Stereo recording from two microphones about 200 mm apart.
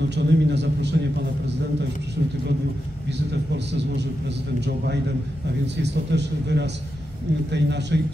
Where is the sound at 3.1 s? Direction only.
60° right (ahead or behind).